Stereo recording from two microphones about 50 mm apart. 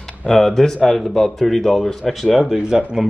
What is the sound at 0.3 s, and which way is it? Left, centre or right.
Speech, centre.